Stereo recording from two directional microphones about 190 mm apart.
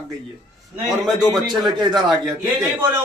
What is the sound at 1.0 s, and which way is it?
Speech, centre (ahead or behind).